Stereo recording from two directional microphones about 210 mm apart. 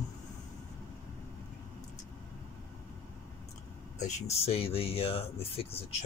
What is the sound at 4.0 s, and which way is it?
Speech, 30° left (ahead or behind).